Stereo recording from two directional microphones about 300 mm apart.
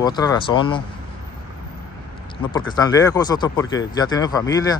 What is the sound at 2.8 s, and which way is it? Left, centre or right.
Speech, centre.